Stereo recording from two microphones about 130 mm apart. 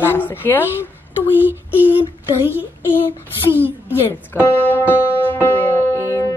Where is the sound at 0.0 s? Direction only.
15° left (ahead or behind).